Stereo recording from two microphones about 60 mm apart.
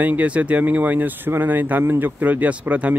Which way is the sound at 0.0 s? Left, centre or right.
Right.